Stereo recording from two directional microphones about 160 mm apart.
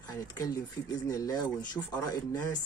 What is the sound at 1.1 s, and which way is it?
Speech, 20° left (ahead or behind).